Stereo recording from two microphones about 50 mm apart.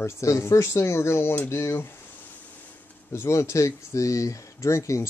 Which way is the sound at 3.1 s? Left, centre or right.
Left.